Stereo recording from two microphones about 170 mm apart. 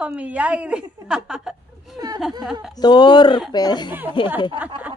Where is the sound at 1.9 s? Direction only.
20° right (ahead or behind).